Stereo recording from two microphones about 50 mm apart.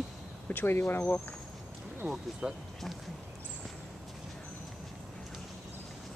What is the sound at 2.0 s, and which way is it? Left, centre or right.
Speech, right.